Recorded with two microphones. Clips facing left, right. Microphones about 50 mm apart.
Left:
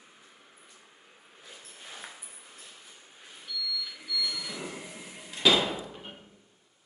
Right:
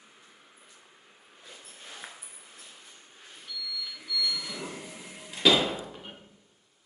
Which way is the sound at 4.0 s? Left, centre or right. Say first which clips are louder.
Right 4 dB; centre.